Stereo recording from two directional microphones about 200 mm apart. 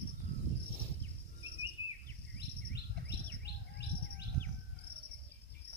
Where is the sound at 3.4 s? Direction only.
55° left (ahead or behind).